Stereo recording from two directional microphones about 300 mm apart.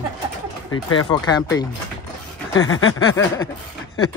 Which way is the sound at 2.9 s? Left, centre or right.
Centre.